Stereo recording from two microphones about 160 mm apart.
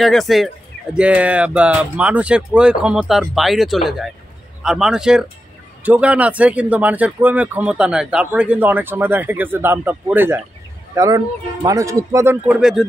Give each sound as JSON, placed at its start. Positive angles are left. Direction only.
{"t": 0.0, "sound": "speech", "side_deg": 0}
{"t": 11.0, "sound": "speech", "side_deg": -25}
{"t": 12.4, "sound": "speech", "side_deg": -5}